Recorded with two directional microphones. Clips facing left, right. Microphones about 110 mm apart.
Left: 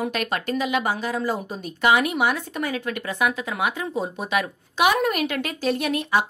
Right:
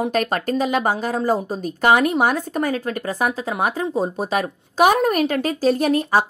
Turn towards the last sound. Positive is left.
turn(degrees=-40)  # may be behind; listen again after turning